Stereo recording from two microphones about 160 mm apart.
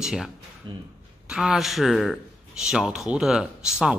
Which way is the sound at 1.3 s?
5° right (ahead or behind).